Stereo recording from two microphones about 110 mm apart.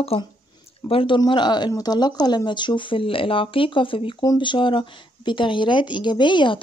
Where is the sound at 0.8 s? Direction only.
55° left (ahead or behind).